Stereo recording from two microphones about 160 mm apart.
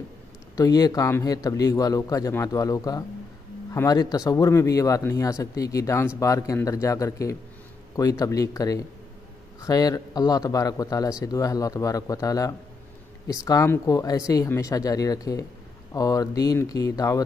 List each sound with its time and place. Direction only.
0.6 s speech: 25° left (ahead or behind)